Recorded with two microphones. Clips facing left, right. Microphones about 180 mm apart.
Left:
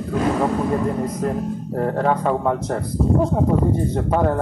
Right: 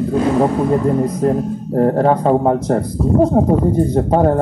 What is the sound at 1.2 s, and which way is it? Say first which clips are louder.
Speech: right 6 dB; 35° right (ahead or behind).